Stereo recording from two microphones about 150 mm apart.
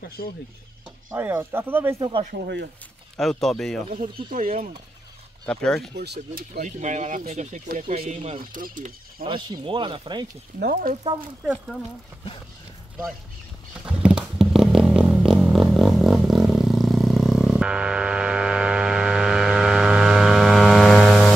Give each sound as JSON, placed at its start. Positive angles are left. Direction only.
{"t": 1.1, "sound": "speech", "side_deg": -15}
{"t": 2.0, "sound": "speech", "side_deg": -30}
{"t": 2.3, "sound": "speech", "side_deg": -90}
{"t": 3.2, "sound": "speech", "side_deg": 0}
{"t": 4.3, "sound": "speech", "side_deg": -65}
{"t": 5.5, "sound": "speech", "side_deg": 5}
{"t": 5.9, "sound": "speech", "side_deg": -90}
{"t": 6.6, "sound": "speech", "side_deg": -55}
{"t": 7.8, "sound": "speech", "side_deg": -40}
{"t": 8.4, "sound": "speech", "side_deg": -70}
{"t": 9.2, "sound": "speech", "side_deg": -35}
{"t": 10.6, "sound": "speech", "side_deg": -80}
{"t": 11.4, "sound": "speech", "side_deg": -5}
{"t": 13.8, "sound": "a sound", "side_deg": -5}